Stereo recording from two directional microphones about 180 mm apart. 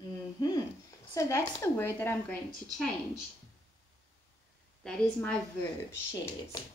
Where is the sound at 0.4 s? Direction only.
20° left (ahead or behind).